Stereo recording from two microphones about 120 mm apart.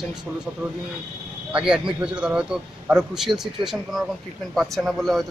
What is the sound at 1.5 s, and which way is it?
Speech, 5° right (ahead or behind).